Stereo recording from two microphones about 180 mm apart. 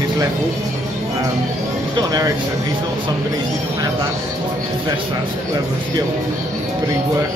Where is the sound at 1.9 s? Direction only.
20° right (ahead or behind).